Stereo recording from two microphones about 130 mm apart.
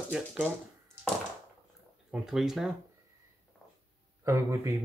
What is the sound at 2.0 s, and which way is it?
Speech, 5° right (ahead or behind).